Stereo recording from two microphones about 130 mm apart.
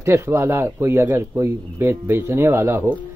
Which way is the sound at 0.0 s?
20° right (ahead or behind).